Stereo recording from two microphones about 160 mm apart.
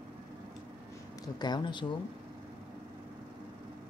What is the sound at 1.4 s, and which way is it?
Speech, 30° left (ahead or behind).